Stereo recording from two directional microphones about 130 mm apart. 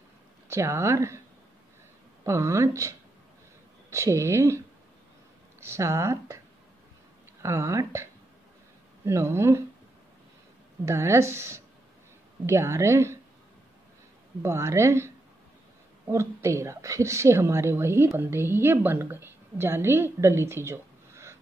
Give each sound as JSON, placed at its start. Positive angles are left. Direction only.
{"t": 0.5, "sound": "a woman's voice", "side_deg": -20}
{"t": 2.2, "sound": "a woman's voice", "side_deg": -20}
{"t": 5.6, "sound": "a woman's voice", "side_deg": -20}
{"t": 7.4, "sound": "a woman's voice", "side_deg": -20}
{"t": 10.9, "sound": "a woman's voice", "side_deg": -20}
{"t": 14.4, "sound": "a woman's voice", "side_deg": -20}
{"t": 16.1, "sound": "a woman's voice", "side_deg": -20}